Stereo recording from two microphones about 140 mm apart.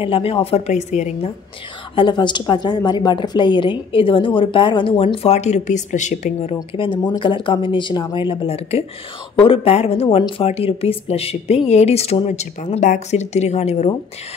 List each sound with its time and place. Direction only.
0.0 s a woman's voice: 40° left (ahead or behind)
2.0 s a woman's voice: 35° left (ahead or behind); by 6.5 s 60° left (ahead or behind)
6.7 s a woman's voice: 35° left (ahead or behind); by 13.8 s 50° left (ahead or behind)